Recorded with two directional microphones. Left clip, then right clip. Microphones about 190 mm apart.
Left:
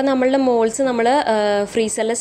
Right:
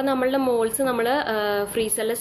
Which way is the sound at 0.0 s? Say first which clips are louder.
Left 5 dB; 30° left (ahead or behind).